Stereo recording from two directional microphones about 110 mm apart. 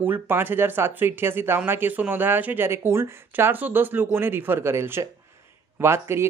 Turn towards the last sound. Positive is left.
turn(degrees=-25)  # may be behind; listen again after turning